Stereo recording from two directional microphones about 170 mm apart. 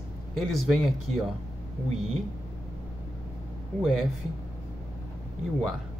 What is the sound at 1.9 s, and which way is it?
Speech, 40° right (ahead or behind).